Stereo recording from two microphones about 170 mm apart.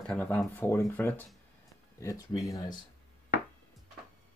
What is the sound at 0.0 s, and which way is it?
Speech, 5° left (ahead or behind).